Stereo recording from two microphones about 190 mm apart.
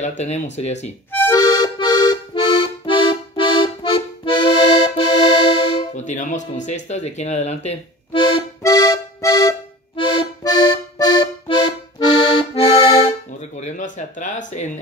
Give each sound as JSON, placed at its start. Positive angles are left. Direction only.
{"t": 0.0, "sound": "speech", "side_deg": 35}
{"t": 1.1, "sound": "accordion", "side_deg": 15}
{"t": 11.4, "sound": "accordion", "side_deg": 30}
{"t": 13.6, "sound": "a sound", "side_deg": 40}